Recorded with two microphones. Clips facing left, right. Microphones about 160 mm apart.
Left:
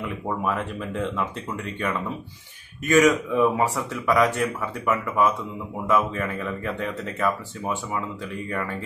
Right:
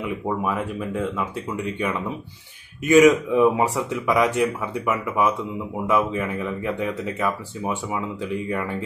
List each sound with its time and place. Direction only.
0.0 s speech: 5° right (ahead or behind)